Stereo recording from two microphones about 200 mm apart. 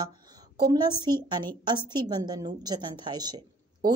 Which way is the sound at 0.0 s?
20° right (ahead or behind).